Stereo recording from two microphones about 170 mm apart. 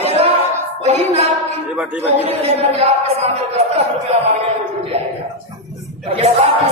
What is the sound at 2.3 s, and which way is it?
Speech, 40° right (ahead or behind).